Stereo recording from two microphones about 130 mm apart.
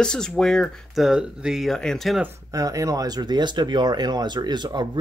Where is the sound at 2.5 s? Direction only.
25° right (ahead or behind).